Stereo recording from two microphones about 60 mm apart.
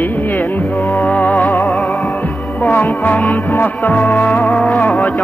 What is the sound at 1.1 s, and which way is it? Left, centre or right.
Music, left.